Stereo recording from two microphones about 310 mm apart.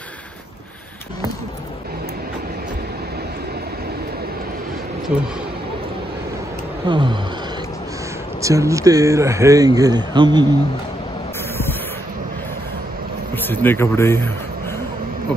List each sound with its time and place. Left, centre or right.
5.1 s speech: centre
6.9 s speech: centre
8.4 s speech: centre
13.4 s speech: centre